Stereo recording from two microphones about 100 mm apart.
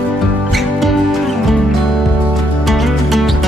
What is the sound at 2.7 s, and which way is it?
Music, centre (ahead or behind).